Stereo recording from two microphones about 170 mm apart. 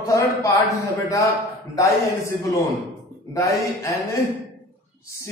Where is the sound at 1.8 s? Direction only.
15° left (ahead or behind).